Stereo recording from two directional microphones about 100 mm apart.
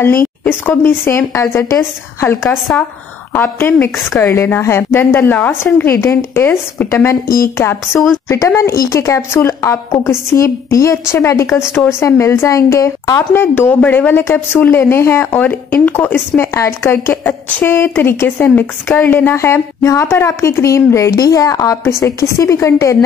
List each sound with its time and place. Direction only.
0.0 s speech: 20° left (ahead or behind)